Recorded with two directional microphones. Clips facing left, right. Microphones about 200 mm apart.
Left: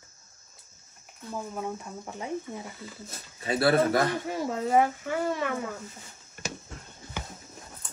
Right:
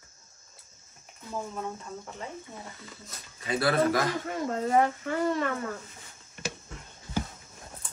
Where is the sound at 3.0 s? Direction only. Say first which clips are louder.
Left 4 dB; 30° left (ahead or behind).